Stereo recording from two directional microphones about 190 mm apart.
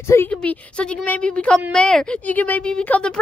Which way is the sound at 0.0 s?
15° left (ahead or behind).